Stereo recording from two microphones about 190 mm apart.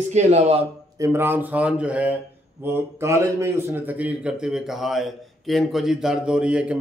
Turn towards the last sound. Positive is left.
turn(degrees=-5)  # may be behind; listen again after turning